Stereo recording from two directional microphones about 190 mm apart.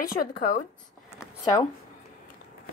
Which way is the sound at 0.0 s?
45° left (ahead or behind).